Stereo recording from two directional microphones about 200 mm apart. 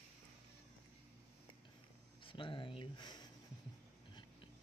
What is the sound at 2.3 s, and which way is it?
Speech, 25° left (ahead or behind).